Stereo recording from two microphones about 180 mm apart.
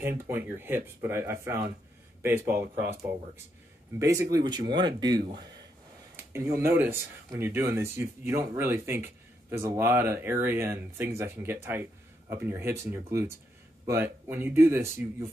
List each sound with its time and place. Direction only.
0.0 s speech: 10° right (ahead or behind)
6.3 s speech: 15° right (ahead or behind)